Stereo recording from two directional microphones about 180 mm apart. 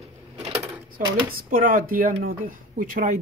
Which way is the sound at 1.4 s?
50° right (ahead or behind).